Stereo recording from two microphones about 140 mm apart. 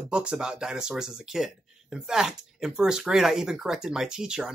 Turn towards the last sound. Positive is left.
turn(degrees=-5)  # may be behind; listen again after turning